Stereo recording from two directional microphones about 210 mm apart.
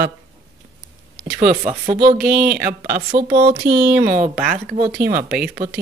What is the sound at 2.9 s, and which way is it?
Speech, 40° right (ahead or behind).